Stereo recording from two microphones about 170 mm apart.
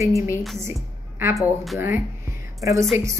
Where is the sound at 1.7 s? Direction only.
15° right (ahead or behind).